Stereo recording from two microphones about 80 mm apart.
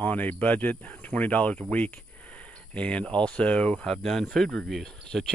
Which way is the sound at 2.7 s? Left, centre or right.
Centre.